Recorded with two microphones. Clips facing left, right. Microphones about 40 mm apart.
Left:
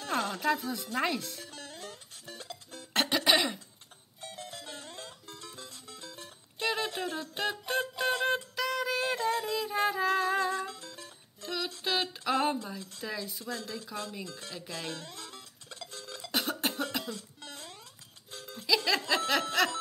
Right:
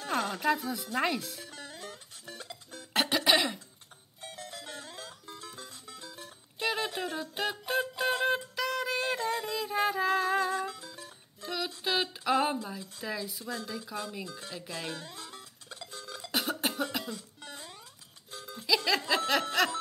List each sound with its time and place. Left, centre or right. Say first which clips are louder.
0.0 s speech: right 1 dB; centre
1.6 s music: right 1 dB; centre
4.6 s music: right 1 dB; right
6.6 s music: even; centre
10.7 s music: right 1 dB; centre
11.8 s a sound: right 1 dB; centre
12.6 s speech: right 1 dB; centre
14.9 s speech: even; centre
15.2 s music: right 1 dB; right
15.9 s cough: right 2 dB; centre
16.3 s cough: even; centre
17.1 s music: even; centre
18.5 s music: even; centre
18.9 s snicker: right 1 dB; centre